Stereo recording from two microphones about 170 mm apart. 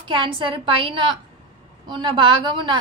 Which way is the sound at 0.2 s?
30° right (ahead or behind).